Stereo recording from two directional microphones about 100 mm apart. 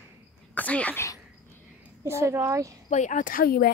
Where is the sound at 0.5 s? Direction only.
15° left (ahead or behind).